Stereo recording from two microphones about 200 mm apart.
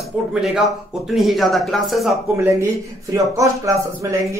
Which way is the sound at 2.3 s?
10° right (ahead or behind).